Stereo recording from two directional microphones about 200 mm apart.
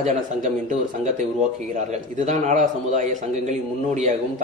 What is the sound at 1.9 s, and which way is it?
A man's voice, 40° right (ahead or behind).